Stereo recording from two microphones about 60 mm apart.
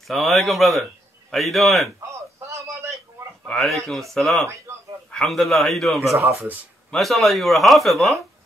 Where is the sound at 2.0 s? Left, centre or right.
Right.